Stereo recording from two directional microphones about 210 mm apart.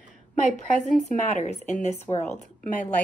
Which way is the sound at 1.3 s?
35° left (ahead or behind).